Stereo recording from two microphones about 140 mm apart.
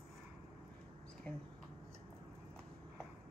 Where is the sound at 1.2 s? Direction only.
10° left (ahead or behind).